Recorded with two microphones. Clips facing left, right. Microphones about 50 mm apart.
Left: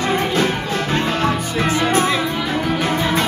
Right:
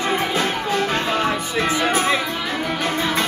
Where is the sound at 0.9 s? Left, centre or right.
Centre.